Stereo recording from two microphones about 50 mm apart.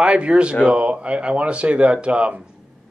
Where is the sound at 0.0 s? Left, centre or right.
Right.